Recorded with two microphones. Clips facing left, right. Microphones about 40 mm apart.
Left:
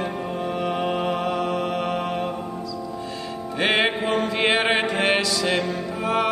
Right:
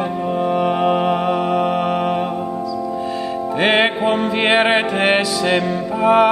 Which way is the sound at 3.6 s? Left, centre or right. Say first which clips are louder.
Right 5 dB; centre.